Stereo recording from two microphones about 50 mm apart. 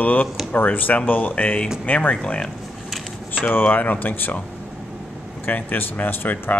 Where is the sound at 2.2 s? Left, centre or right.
Left.